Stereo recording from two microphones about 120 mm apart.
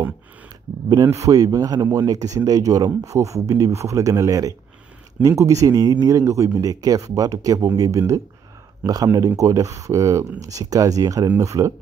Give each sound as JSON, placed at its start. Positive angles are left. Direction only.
{"t": 0.8, "sound": "speech", "side_deg": -35}